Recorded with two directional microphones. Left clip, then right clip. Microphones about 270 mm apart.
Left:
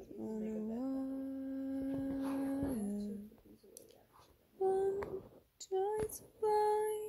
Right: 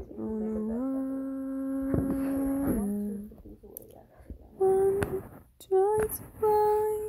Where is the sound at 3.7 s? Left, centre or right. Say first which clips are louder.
Right 6 dB; centre.